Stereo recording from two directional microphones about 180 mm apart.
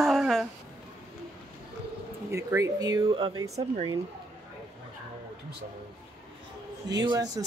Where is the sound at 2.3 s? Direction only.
15° right (ahead or behind).